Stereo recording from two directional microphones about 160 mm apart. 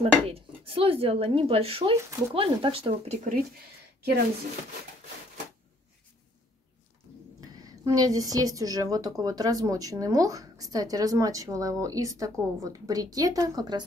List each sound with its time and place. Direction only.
0.0 s speech: 35° right (ahead or behind)
2.0 s a woman's voice: 20° right (ahead or behind)
2.3 s speech: 35° right (ahead or behind)
7.3 s a woman's voice: 20° right (ahead or behind)